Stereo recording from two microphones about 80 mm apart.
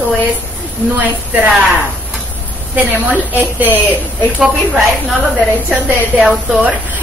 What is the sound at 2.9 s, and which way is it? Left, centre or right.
A woman's voice, right.